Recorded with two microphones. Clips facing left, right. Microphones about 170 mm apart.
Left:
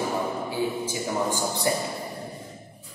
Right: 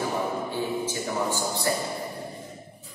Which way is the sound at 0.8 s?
15° left (ahead or behind).